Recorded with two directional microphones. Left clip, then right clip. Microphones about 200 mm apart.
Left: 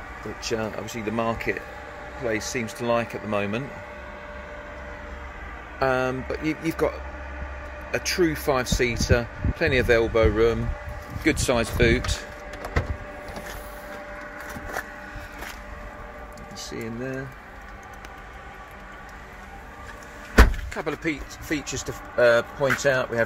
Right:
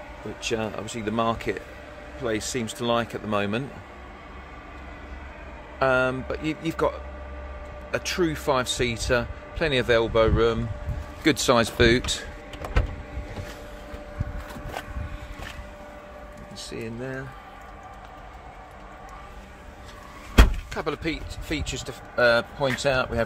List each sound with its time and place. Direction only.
0.4 s speech: 10° right (ahead or behind)
5.8 s a man's voice: 5° right (ahead or behind)
11.2 s speech: 30° right (ahead or behind)
16.5 s speech: centre (ahead or behind)
20.7 s a man's voice: 10° right (ahead or behind)